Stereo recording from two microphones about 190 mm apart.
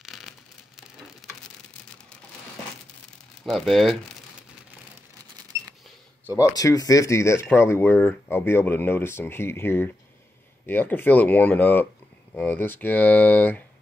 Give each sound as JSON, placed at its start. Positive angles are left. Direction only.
{"t": 0.0, "sound": "a sound", "side_deg": 0}
{"t": 3.4, "sound": "speech", "side_deg": 0}
{"t": 6.3, "sound": "speech", "side_deg": 15}